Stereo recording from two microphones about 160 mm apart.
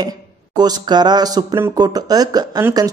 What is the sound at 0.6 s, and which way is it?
Speech, 25° right (ahead or behind).